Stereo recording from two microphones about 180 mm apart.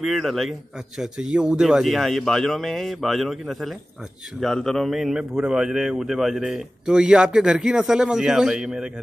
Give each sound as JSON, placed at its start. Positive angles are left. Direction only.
{"t": 0.0, "sound": "a man's voice", "side_deg": 0}